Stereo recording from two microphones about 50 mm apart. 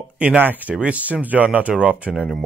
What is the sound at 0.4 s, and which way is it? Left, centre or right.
Speech, right.